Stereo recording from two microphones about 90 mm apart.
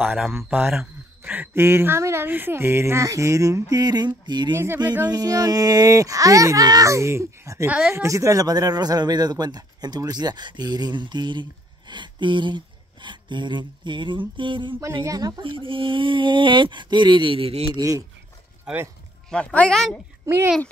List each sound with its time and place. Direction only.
0.2 s speech: centre (ahead or behind)
1.2 s speech: 20° right (ahead or behind); by 3.6 s 40° right (ahead or behind)
3.7 s speech: 50° right (ahead or behind)
5.0 s speech: 45° right (ahead or behind)
7.6 s a woman's voice: 15° right (ahead or behind)
7.9 s speech: 35° right (ahead or behind); by 14.8 s 65° right (ahead or behind)
15.0 s speech: 50° right (ahead or behind)
15.5 s speech: 70° right (ahead or behind)
17.7 s speech: 40° right (ahead or behind)
18.7 s speech: 10° right (ahead or behind)
19.3 s a woman's voice: 10° left (ahead or behind)